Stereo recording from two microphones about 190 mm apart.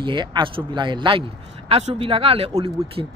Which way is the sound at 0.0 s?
25° right (ahead or behind).